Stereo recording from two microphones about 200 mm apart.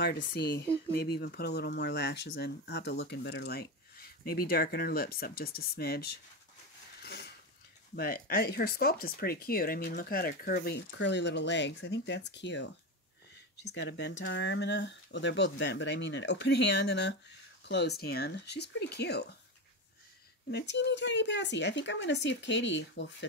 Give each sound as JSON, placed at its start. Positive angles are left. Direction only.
{"t": 0.0, "sound": "speech", "side_deg": 55}
{"t": 7.0, "sound": "a sound", "side_deg": 55}
{"t": 7.9, "sound": "speech", "side_deg": 50}
{"t": 20.5, "sound": "speech", "side_deg": 60}